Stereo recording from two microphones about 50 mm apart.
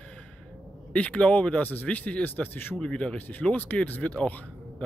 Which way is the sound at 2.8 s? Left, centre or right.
Left.